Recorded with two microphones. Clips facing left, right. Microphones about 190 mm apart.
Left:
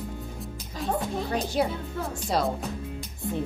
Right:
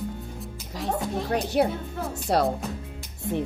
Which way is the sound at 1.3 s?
65° right (ahead or behind).